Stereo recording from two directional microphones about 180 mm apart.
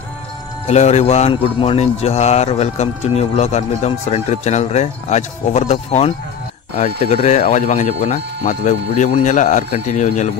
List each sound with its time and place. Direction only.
0.7 s speech: 35° left (ahead or behind)